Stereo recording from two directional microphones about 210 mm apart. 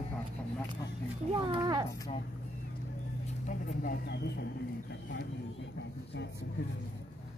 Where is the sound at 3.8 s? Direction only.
45° left (ahead or behind).